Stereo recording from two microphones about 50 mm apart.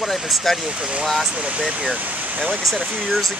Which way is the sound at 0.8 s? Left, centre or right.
Right.